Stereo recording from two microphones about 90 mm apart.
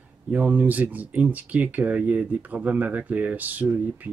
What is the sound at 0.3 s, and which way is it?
Speech, 20° right (ahead or behind).